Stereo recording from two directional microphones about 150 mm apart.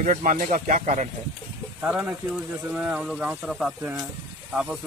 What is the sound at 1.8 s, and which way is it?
Speech, 10° right (ahead or behind).